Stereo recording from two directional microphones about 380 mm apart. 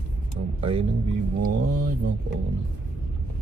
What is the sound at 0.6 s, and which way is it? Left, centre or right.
Speech, centre.